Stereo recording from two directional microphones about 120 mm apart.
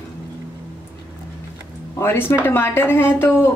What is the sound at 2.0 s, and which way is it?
Speech, 20° left (ahead or behind).